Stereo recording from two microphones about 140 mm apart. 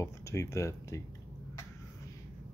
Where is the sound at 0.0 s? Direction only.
20° left (ahead or behind).